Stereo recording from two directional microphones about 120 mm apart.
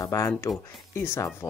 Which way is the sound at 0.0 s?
30° left (ahead or behind).